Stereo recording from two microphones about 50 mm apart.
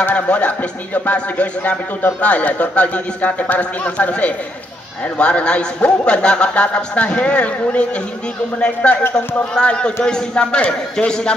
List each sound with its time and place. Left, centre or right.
0.0 s a man's voice: left